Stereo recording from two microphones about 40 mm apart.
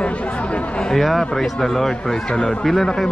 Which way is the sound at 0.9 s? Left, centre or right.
Centre.